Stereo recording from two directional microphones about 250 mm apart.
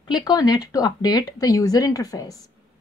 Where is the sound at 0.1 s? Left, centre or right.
Centre.